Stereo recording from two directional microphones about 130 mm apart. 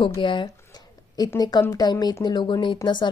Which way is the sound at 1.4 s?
30° left (ahead or behind).